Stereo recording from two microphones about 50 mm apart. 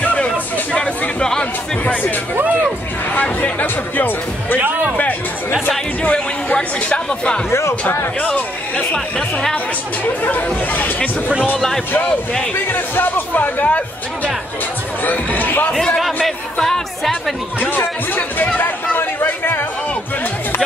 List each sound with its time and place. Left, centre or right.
0.0 s music: left
1.4 s music: left
3.2 s speech: left
6.0 s speech: left
8.9 s speech: centre
10.2 s speech: left
12.7 s speech: left
15.0 s speech: left
16.3 s speech: centre
17.6 s speech: left